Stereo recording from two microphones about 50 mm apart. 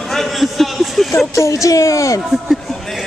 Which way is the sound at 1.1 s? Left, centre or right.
Left.